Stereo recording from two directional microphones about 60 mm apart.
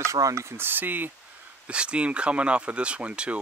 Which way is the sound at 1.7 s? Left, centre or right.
Centre.